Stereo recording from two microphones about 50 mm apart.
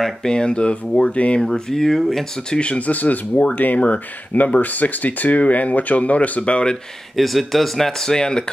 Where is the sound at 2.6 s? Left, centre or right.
Left.